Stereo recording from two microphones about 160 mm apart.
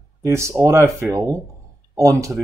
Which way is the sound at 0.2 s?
15° right (ahead or behind).